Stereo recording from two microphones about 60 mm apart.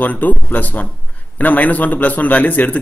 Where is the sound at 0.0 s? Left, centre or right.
Left.